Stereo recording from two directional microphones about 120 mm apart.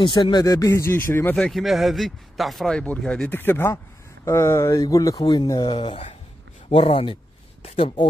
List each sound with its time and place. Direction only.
0.0 s speech: 40° left (ahead or behind); by 1.3 s 20° left (ahead or behind)
1.3 s speech: centre (ahead or behind); by 7.9 s 55° left (ahead or behind)